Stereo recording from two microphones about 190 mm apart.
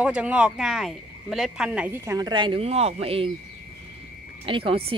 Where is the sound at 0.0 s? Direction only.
5° right (ahead or behind); by 3.3 s 30° right (ahead or behind).